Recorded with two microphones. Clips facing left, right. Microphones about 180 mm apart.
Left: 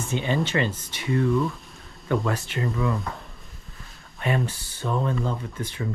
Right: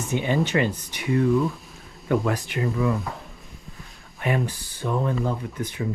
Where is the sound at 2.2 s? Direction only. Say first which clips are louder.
Right 2 dB; 15° right (ahead or behind).